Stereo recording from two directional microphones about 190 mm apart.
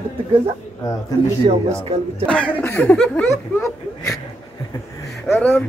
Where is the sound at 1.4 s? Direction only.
30° right (ahead or behind).